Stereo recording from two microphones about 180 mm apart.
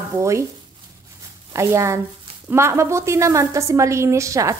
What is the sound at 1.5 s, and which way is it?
A woman's voice, 15° right (ahead or behind).